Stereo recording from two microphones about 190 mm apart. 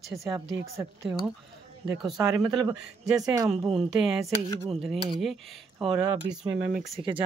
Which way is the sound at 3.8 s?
Centre (ahead or behind).